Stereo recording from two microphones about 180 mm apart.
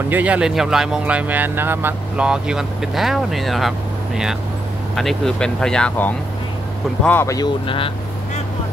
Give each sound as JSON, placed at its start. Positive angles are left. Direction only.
{"t": 0.1, "sound": "speech", "side_deg": -10}
{"t": 4.9, "sound": "speech", "side_deg": 0}
{"t": 7.6, "sound": "speech", "side_deg": 30}